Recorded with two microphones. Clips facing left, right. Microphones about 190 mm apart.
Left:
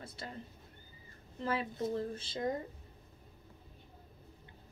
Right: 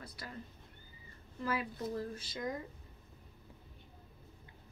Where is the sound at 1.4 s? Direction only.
25° left (ahead or behind).